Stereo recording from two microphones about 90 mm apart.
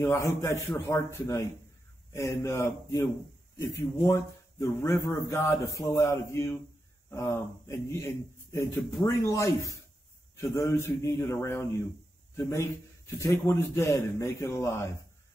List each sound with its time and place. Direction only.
0.0 s a man's voice: 30° left (ahead or behind)